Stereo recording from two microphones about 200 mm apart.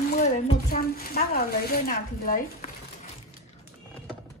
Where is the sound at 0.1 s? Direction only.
40° left (ahead or behind).